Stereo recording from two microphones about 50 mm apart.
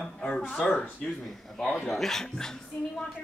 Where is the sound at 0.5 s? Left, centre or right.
Centre.